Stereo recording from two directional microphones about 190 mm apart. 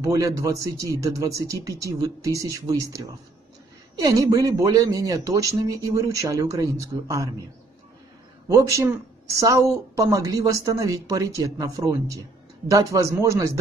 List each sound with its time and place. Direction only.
0.0 s speech: 15° right (ahead or behind)
8.5 s speech: 15° right (ahead or behind)